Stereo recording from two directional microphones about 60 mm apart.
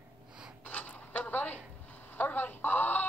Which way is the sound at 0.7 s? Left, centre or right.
Left.